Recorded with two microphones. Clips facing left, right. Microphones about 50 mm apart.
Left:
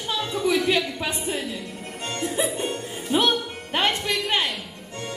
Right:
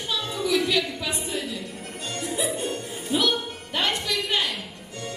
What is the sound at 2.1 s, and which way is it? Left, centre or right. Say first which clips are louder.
Music: left 2 dB; left.